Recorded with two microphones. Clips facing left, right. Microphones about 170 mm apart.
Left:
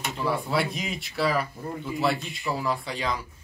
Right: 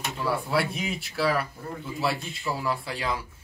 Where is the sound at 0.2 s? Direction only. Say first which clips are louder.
Even; centre (ahead or behind).